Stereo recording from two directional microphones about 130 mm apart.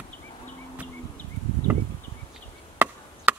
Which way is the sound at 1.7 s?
10° right (ahead or behind).